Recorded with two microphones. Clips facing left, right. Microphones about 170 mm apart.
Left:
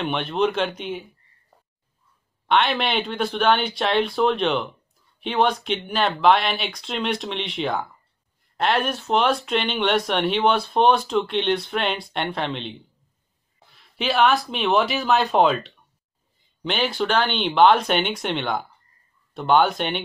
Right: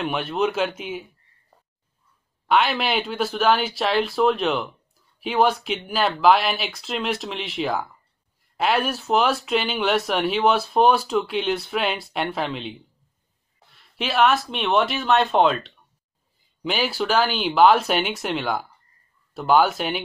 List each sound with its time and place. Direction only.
0.0 s speech: 5° right (ahead or behind)
2.4 s speech: 5° right (ahead or behind)